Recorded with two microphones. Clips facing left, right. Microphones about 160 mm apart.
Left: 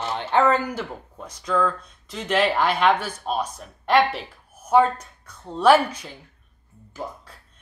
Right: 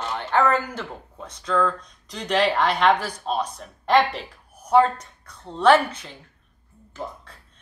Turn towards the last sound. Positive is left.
turn(degrees=10)  # may be behind; listen again after turning